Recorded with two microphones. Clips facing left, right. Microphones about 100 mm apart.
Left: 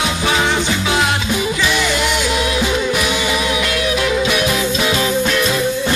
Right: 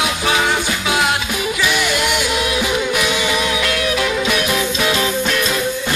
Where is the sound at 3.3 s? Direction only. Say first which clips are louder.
Even; centre (ahead or behind).